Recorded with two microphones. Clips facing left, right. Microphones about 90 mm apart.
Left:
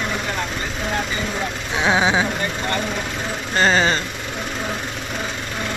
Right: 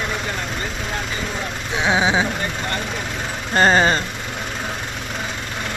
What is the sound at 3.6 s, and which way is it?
Speech, 35° right (ahead or behind).